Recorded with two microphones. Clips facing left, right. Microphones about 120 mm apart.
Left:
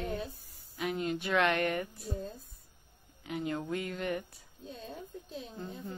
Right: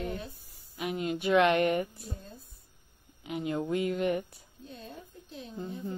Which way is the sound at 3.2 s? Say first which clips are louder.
Right 3 dB; 15° right (ahead or behind).